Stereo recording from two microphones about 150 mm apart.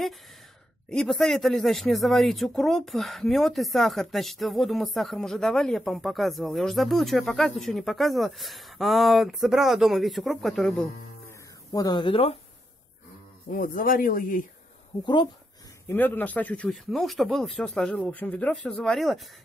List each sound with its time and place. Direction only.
0.8 s speech: 5° left (ahead or behind)
11.2 s guitar: 25° left (ahead or behind)
13.5 s speech: 70° left (ahead or behind)
15.9 s speech: 15° left (ahead or behind)